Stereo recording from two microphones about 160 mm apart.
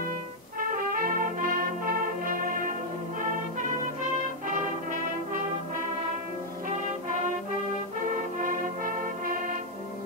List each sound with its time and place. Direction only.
0.6 s brass instrument: 65° right (ahead or behind)
3.5 s music: 50° right (ahead or behind)
8.4 s brass instrument: 60° right (ahead or behind)